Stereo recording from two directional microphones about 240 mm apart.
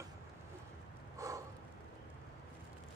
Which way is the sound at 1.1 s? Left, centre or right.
Centre.